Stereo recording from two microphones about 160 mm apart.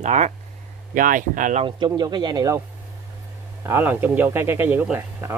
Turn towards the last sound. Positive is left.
turn(degrees=-15)  # may be behind; listen again after turning